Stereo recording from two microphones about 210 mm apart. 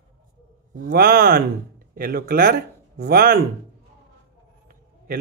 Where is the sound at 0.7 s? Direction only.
45° right (ahead or behind).